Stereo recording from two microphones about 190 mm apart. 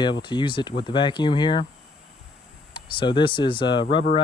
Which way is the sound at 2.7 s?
25° left (ahead or behind).